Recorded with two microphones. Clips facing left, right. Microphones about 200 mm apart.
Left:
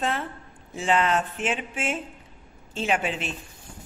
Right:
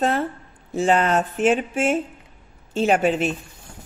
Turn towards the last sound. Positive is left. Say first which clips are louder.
# right 8 dB
turn(degrees=-45)  # may be behind; listen again after turning